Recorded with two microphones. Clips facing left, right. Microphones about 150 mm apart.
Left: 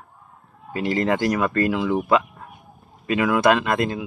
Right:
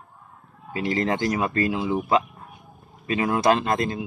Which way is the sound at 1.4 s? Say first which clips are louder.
Left 3 dB; 60° left (ahead or behind).